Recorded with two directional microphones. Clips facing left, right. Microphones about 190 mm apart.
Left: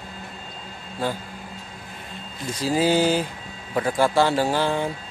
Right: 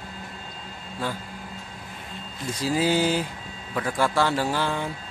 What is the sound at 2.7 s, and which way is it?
A man's voice, 35° left (ahead or behind).